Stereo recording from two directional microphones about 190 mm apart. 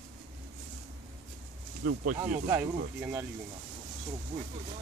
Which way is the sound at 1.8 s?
50° right (ahead or behind).